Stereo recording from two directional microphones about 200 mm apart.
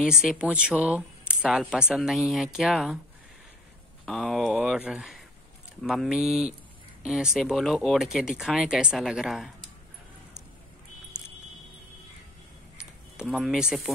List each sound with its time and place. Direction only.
0.0 s speech: centre (ahead or behind)
4.0 s speech: centre (ahead or behind)
13.2 s speech: centre (ahead or behind)